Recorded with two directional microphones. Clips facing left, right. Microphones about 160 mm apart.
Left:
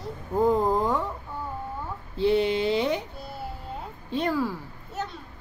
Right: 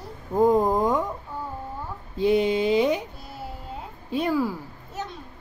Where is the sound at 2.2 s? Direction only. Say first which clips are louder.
Right 2 dB; 10° right (ahead or behind).